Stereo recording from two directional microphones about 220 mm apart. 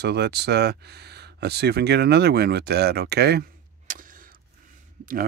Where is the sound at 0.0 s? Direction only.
50° right (ahead or behind).